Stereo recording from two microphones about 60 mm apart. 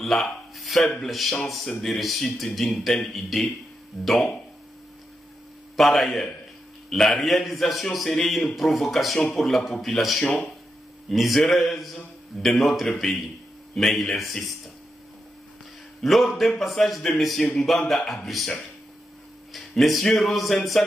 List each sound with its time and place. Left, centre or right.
0.0 s speech: centre
0.7 s speech: centre
1.0 s a man's voice: centre
5.8 s a man's voice: centre
16.0 s a man's voice: centre